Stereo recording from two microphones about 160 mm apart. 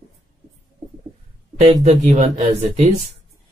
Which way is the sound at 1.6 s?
45° right (ahead or behind).